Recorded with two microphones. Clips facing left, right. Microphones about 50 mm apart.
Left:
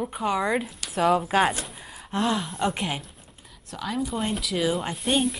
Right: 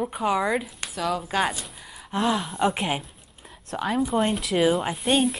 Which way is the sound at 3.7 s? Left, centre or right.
Right.